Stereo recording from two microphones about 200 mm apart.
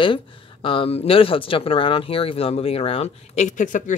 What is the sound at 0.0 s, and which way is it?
A woman's voice, 25° left (ahead or behind).